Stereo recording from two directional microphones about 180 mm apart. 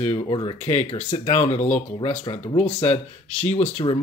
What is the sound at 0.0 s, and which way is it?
Speech, 25° left (ahead or behind).